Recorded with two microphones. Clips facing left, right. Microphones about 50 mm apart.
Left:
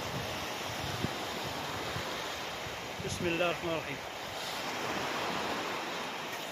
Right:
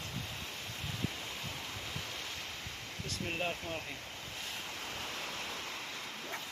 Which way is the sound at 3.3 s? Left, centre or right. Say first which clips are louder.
Left 5 dB; left.